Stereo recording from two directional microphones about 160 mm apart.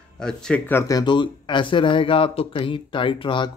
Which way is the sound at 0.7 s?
20° left (ahead or behind).